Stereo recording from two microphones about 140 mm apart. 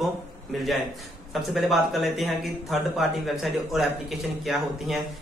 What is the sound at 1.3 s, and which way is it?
Speech, centre (ahead or behind).